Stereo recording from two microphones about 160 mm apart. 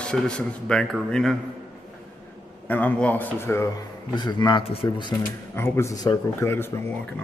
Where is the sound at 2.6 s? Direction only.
10° left (ahead or behind).